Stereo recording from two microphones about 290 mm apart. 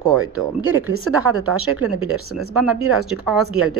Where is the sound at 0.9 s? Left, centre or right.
Right.